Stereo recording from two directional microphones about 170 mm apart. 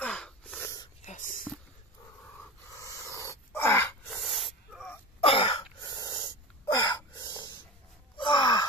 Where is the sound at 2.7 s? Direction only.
20° left (ahead or behind).